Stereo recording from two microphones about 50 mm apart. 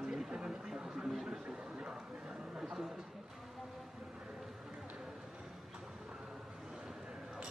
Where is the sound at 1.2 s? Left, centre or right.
Centre.